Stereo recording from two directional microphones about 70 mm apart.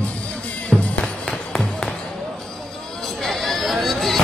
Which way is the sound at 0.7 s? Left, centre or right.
Centre.